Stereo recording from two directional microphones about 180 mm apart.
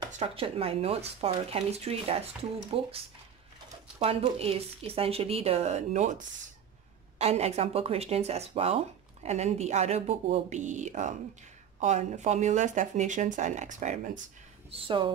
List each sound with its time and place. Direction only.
0.2 s speech: 30° right (ahead or behind)
4.0 s speech: 30° right (ahead or behind)
14.7 s speech: 30° right (ahead or behind)